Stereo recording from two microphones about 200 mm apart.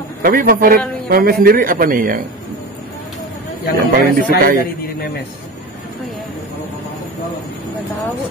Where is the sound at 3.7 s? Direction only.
45° right (ahead or behind).